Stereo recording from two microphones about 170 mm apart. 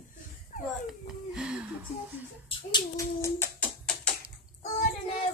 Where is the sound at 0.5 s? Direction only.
50° left (ahead or behind).